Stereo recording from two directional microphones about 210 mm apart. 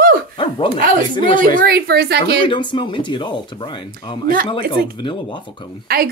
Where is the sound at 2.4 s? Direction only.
20° left (ahead or behind).